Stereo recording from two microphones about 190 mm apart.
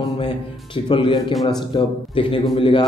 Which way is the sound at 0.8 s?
25° left (ahead or behind).